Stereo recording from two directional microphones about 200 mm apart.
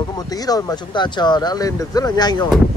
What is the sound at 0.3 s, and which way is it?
Speech, 20° left (ahead or behind).